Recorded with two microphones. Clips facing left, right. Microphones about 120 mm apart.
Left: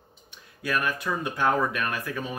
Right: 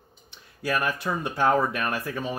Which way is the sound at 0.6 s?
35° right (ahead or behind).